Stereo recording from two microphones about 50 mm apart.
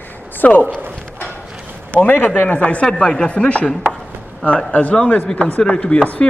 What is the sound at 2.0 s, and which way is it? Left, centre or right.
Speech, left.